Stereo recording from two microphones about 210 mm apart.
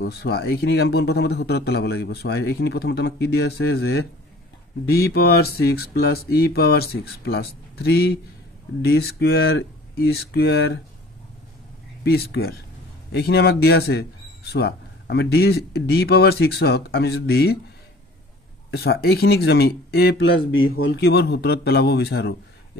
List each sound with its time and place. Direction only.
0.0 s a man's voice: 50° left (ahead or behind)
12.0 s a man's voice: 50° left (ahead or behind)
18.7 s a man's voice: 50° left (ahead or behind)